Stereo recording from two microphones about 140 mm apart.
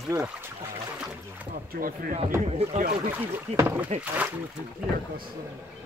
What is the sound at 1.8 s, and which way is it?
Speech, 85° right.